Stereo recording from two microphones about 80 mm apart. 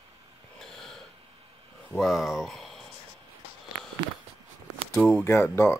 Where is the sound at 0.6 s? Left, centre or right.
Centre.